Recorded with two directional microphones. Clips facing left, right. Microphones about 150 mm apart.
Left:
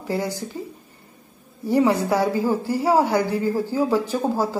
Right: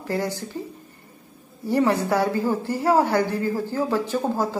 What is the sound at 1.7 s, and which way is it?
A woman's voice, 15° left (ahead or behind).